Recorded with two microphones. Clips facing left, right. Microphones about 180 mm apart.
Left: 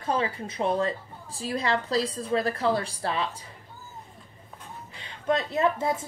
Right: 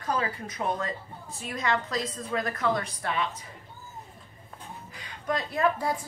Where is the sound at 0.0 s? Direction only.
25° left (ahead or behind).